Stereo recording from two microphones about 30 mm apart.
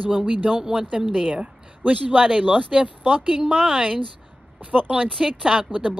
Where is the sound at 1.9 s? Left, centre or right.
Right.